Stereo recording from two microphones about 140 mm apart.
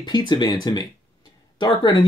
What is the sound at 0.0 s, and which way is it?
Speech, 30° left (ahead or behind).